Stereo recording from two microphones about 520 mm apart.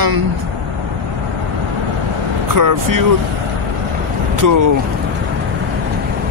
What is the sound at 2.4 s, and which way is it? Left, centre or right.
Speech, right.